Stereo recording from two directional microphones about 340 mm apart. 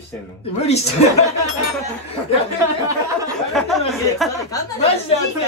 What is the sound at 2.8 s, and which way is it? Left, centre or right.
Speech, centre.